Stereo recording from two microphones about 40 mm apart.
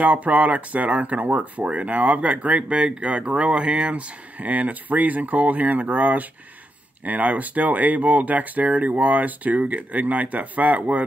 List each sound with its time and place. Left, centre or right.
0.0 s speech: right